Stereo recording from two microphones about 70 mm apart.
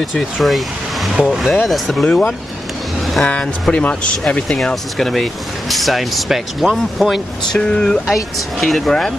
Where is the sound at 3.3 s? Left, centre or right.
Centre.